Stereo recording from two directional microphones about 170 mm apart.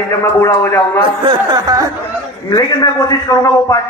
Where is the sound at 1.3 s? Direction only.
25° right (ahead or behind).